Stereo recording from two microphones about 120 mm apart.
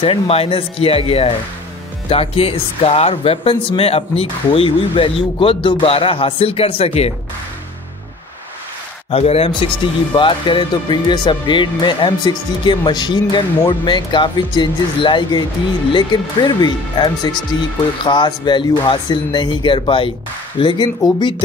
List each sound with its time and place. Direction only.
0.0 s speech: 50° left (ahead or behind)
9.1 s speech: 55° left (ahead or behind); by 21.4 s 40° left (ahead or behind)